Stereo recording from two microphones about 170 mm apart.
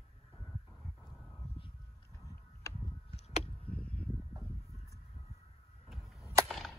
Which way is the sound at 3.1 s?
40° left (ahead or behind).